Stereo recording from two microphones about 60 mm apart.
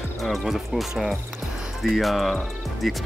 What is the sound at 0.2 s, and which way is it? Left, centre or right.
Speech, centre.